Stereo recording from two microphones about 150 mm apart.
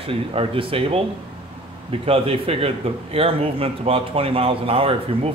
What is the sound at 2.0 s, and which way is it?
A man's voice, 40° right (ahead or behind).